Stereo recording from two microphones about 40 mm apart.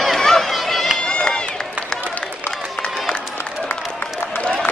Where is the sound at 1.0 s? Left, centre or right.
Left.